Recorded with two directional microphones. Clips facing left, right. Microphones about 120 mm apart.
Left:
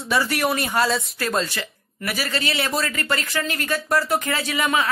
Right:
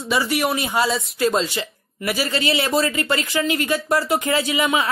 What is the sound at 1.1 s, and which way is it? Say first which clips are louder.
A man's voice: right 4 dB; 20° right (ahead or behind).